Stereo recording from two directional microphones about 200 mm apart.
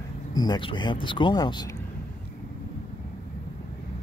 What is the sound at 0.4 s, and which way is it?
Speech, 25° left (ahead or behind).